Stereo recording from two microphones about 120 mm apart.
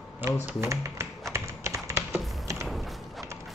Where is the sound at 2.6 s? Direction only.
Centre (ahead or behind).